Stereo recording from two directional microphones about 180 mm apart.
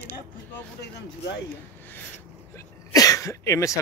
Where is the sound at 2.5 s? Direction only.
15° left (ahead or behind).